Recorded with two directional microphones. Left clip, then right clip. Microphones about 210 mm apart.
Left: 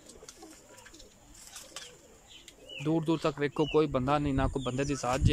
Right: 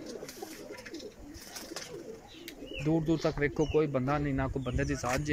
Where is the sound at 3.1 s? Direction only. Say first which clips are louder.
Even; 5° left (ahead or behind).